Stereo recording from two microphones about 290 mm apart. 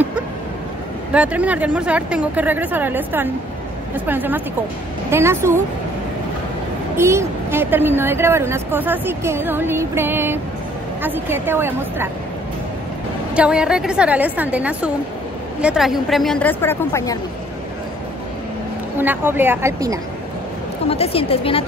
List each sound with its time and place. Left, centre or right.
1.1 s speech: centre
7.0 s speech: centre
13.3 s speech: centre
18.9 s speech: centre
20.9 s a woman's voice: centre